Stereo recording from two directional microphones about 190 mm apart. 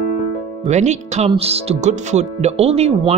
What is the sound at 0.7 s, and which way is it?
Speech, 35° right (ahead or behind).